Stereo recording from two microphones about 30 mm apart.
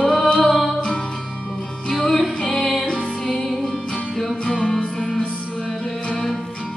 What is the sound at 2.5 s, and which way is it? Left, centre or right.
Music, left.